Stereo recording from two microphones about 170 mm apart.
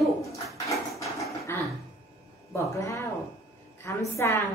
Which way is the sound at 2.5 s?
15° left (ahead or behind).